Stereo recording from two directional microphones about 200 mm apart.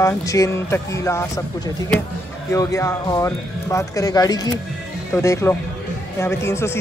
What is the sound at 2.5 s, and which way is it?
Speech, 15° left (ahead or behind).